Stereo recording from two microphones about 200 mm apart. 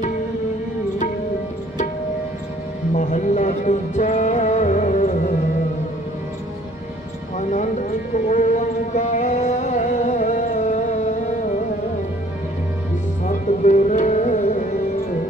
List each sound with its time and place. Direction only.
2.9 s music: 40° left (ahead or behind)
7.3 s music: 35° left (ahead or behind)
13.2 s music: 35° left (ahead or behind)